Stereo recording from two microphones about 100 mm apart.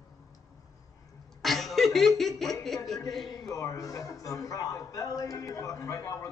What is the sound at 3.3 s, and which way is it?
A man's voice, 35° left (ahead or behind).